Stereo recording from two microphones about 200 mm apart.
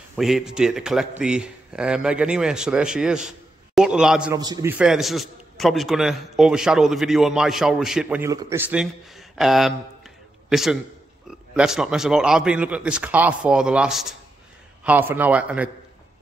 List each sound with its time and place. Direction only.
0.1 s a man's voice: centre (ahead or behind)
4.3 s a man's voice: 20° right (ahead or behind)
4.7 s a man's voice: 5° right (ahead or behind)
8.3 s a man's voice: 15° right (ahead or behind)